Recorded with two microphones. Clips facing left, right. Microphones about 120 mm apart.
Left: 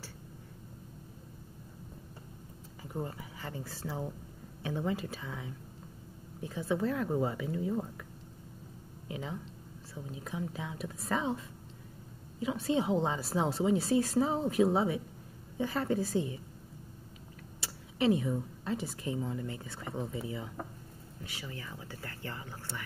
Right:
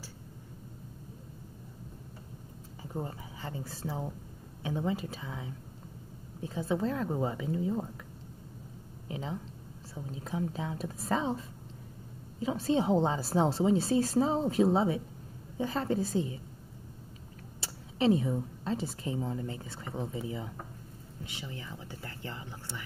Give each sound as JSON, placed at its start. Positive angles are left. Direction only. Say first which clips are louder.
{"t": 2.8, "sound": "a woman's voice", "louder": "even", "side_deg": -25}
{"t": 9.0, "sound": "a woman's voice", "louder": "right 2 dB", "side_deg": -25}
{"t": 17.6, "sound": "a sound", "louder": "right 1 dB", "side_deg": -30}
{"t": 18.6, "sound": "a woman's voice", "louder": "right 2 dB", "side_deg": -25}